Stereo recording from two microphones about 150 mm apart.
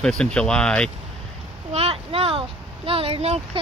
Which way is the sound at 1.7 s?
40° right (ahead or behind).